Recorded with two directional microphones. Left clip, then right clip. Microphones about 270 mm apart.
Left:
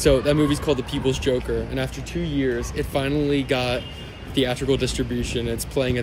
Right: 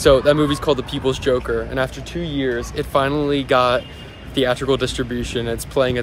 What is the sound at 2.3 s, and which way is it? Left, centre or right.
Speech, right.